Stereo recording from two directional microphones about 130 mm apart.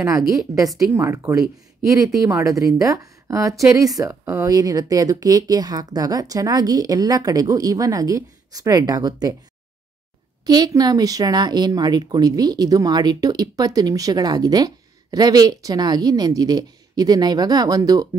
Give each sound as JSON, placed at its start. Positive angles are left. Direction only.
{"t": 0.0, "sound": "speech", "side_deg": -25}
{"t": 10.4, "sound": "speech", "side_deg": -30}